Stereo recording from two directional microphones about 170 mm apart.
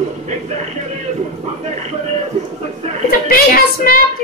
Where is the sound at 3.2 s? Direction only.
55° left (ahead or behind).